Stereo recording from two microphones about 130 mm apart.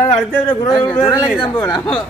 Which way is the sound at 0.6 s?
35° left (ahead or behind).